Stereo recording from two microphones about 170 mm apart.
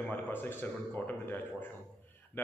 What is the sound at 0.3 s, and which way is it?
A man's voice, 10° left (ahead or behind).